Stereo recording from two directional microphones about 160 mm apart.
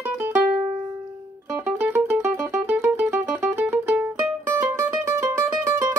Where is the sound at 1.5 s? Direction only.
15° right (ahead or behind).